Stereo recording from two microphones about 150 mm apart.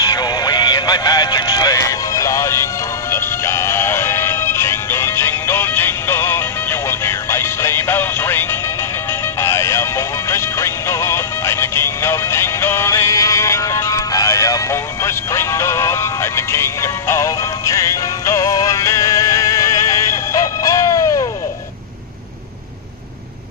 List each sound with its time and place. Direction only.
0.0 s music: 25° left (ahead or behind)